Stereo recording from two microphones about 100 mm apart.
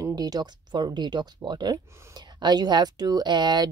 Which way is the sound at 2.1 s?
45° right (ahead or behind).